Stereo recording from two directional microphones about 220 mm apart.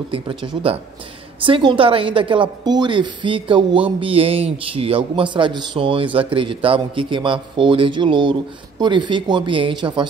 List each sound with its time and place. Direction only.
0.1 s a man's voice: 25° right (ahead or behind)